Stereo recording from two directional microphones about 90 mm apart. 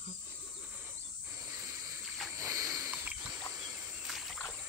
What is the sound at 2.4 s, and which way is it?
Rowboat, 35° right (ahead or behind).